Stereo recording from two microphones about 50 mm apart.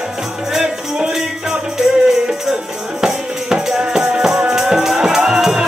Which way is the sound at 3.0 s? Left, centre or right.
Centre.